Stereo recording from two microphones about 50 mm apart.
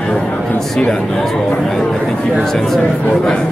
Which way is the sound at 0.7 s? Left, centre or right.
Centre.